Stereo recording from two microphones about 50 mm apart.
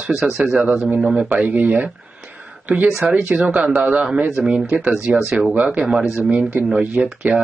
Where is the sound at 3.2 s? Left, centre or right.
Right.